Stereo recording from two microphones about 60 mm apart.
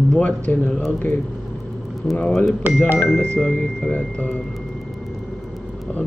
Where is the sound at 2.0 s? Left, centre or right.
Centre.